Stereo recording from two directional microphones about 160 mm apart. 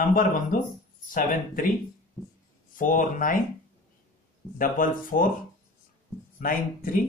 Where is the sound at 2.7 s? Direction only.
55° left (ahead or behind).